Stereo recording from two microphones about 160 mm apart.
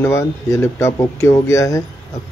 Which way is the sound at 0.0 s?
15° left (ahead or behind).